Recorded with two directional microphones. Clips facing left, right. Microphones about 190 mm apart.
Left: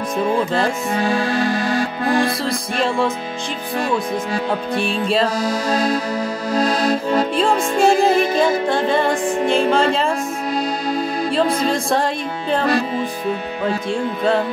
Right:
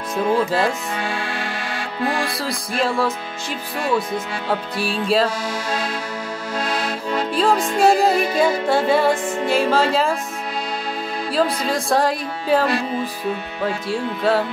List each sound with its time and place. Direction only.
0.9 s music: 40° left (ahead or behind)
2.4 s music: centre (ahead or behind)
4.7 s music: 5° right (ahead or behind)
5.4 s music: 40° left (ahead or behind)
6.5 s accordion: 40° left (ahead or behind)
7.3 s music: centre (ahead or behind)
11.2 s music: 5° right (ahead or behind)
13.8 s music: 5° right (ahead or behind)